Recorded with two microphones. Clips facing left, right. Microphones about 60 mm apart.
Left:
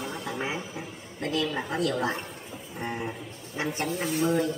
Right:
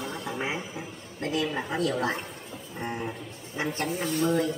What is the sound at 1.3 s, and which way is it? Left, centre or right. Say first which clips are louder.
Speech: even; right.